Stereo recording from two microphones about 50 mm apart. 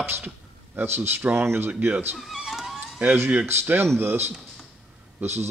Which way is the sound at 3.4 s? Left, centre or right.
Right.